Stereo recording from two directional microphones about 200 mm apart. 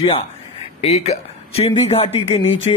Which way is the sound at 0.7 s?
35° left (ahead or behind).